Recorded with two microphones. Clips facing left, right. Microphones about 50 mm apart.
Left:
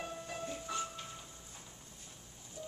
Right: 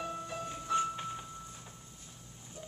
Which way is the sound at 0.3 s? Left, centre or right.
Right.